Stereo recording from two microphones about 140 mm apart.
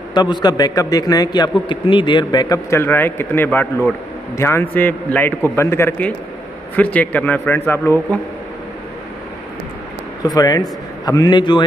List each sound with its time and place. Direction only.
0.1 s a man's voice: 30° left (ahead or behind); by 8.0 s 15° left (ahead or behind)
10.2 s a man's voice: 25° left (ahead or behind)